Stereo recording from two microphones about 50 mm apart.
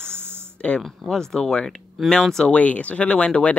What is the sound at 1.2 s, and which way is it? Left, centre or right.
Speech, centre.